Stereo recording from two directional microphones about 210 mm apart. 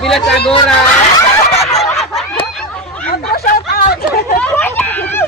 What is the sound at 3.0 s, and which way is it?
Hubbub, 45° left (ahead or behind).